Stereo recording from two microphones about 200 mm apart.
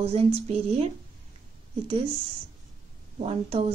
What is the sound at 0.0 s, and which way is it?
Speech, 30° right (ahead or behind).